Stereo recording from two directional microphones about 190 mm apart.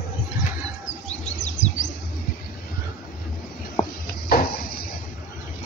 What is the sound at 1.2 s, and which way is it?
Bird, 40° left (ahead or behind).